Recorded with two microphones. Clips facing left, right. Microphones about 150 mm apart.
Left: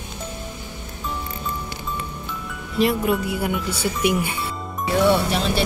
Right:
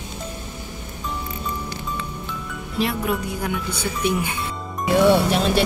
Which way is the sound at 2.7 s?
Centre (ahead or behind).